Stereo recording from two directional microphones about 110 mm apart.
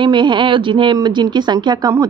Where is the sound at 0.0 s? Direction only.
45° right (ahead or behind).